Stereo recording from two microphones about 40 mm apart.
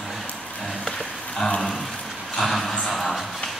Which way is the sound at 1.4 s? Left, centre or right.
Centre.